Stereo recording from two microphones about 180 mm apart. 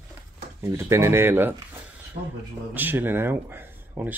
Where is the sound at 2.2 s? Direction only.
40° right (ahead or behind).